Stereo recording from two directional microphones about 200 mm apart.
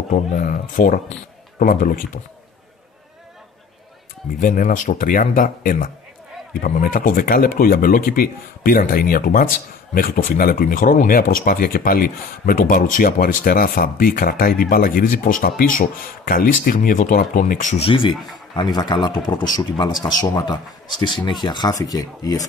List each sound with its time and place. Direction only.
0.1 s speech: 45° left (ahead or behind)
4.4 s a man's voice: 40° left (ahead or behind); by 22.5 s 20° left (ahead or behind)